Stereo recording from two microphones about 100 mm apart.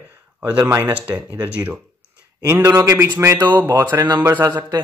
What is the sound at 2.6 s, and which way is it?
Speech, 30° right (ahead or behind).